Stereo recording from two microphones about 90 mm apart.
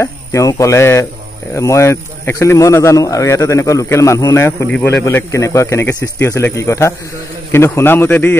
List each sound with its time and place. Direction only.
0.0 s a man's voice: 35° left (ahead or behind)